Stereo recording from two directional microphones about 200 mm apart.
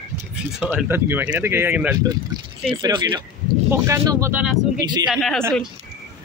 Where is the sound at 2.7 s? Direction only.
20° right (ahead or behind).